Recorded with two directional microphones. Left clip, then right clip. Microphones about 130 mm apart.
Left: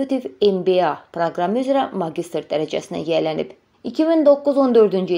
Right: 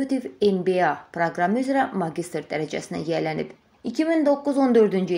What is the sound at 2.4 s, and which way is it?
Speech, 50° right (ahead or behind).